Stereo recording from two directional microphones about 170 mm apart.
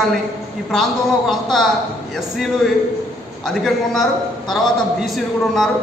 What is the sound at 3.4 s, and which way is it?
A man's voice, centre (ahead or behind).